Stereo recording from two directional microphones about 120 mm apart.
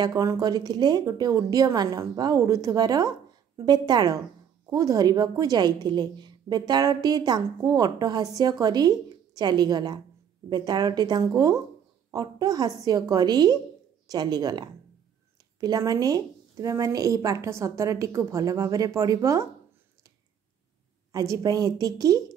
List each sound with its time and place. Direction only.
0.0 s a woman's voice: 30° right (ahead or behind)
15.6 s a woman's voice: 30° right (ahead or behind)
21.1 s a woman's voice: 30° right (ahead or behind)